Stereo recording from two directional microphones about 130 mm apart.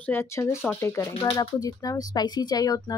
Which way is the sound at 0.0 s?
20° left (ahead or behind).